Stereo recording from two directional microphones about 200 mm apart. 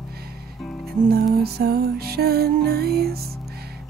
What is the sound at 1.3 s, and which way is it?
Music, 50° right (ahead or behind).